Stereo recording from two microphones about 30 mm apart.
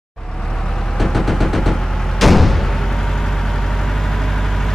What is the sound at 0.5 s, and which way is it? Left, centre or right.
Vehicle, centre.